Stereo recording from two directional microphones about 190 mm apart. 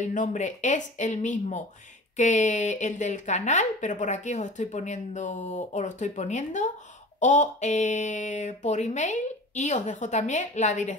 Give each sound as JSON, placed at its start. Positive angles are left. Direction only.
{"t": 0.0, "sound": "speech", "side_deg": 40}